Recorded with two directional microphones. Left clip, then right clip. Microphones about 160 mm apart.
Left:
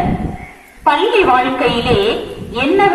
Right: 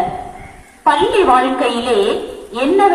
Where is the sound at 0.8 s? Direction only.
55° right (ahead or behind).